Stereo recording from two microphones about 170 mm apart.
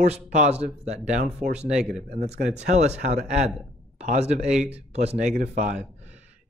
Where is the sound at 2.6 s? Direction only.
40° right (ahead or behind).